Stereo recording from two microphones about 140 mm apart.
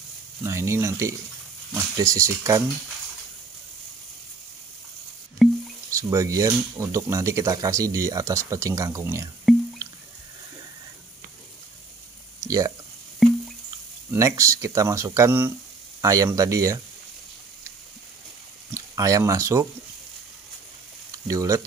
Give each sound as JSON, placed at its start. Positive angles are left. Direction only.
{"t": 0.4, "sound": "speech", "side_deg": -20}
{"t": 5.4, "sound": "drip", "side_deg": 0}
{"t": 5.9, "sound": "speech", "side_deg": -20}
{"t": 12.4, "sound": "a sound", "side_deg": -25}
{"t": 13.2, "sound": "a sound", "side_deg": 0}
{"t": 14.1, "sound": "speech", "side_deg": -20}
{"t": 18.7, "sound": "speech", "side_deg": -25}
{"t": 21.1, "sound": "speech", "side_deg": -25}